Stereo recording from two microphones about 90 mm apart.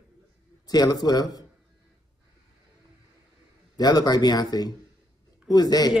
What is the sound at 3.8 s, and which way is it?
Speech, 45° left (ahead or behind).